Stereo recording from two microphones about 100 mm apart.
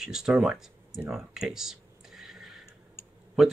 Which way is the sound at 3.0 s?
25° left (ahead or behind).